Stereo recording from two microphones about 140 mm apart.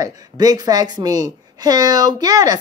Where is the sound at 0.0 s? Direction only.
25° right (ahead or behind).